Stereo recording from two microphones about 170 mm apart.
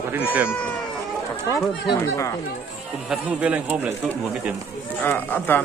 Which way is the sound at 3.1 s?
5° right (ahead or behind).